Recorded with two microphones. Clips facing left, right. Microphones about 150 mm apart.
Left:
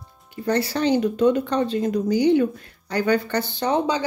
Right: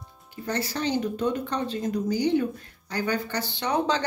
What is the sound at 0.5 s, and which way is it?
A woman's voice, 65° left (ahead or behind).